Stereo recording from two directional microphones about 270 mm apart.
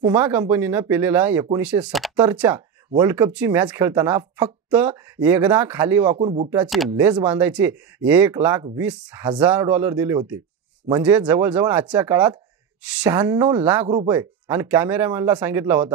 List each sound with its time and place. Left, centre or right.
0.0 s speech: centre
6.1 s speech: right
6.6 s speech: centre